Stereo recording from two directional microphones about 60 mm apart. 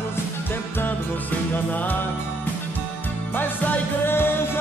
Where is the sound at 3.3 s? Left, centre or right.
Left.